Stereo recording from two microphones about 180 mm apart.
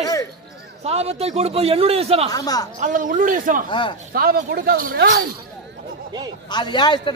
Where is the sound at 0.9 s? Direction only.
35° right (ahead or behind).